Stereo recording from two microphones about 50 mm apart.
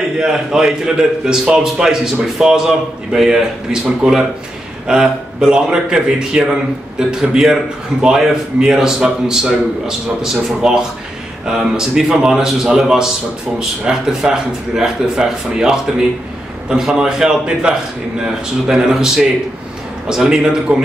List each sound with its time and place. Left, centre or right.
0.2 s a man's voice: centre